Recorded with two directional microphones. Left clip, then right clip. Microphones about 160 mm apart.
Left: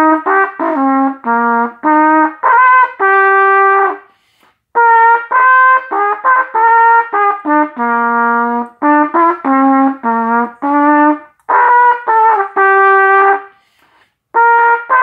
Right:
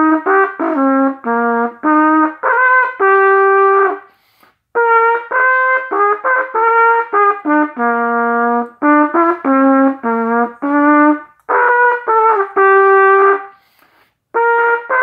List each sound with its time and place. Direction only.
0.0 s brass instrument: 25° left (ahead or behind)
14.3 s brass instrument: 20° left (ahead or behind)